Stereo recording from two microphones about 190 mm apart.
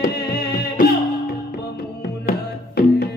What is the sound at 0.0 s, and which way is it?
Music, 55° left (ahead or behind).